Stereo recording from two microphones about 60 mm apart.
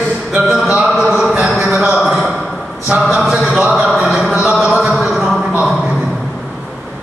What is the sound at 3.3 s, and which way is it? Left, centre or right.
Music, centre.